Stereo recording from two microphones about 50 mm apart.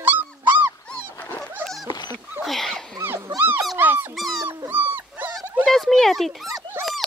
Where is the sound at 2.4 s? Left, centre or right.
Centre.